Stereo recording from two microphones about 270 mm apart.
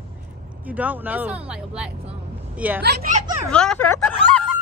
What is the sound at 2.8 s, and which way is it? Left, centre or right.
Speech, right.